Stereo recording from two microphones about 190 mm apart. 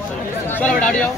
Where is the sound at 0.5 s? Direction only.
5° left (ahead or behind).